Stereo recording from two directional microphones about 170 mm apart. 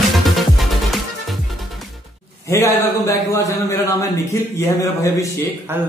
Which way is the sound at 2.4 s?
15° left (ahead or behind).